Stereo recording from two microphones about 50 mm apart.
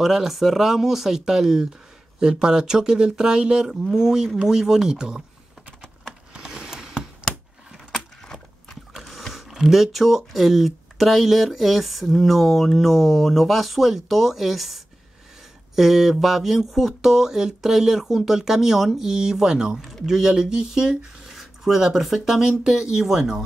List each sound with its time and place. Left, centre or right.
0.0 s speech: centre
6.3 s a sound: centre
9.0 s speech: centre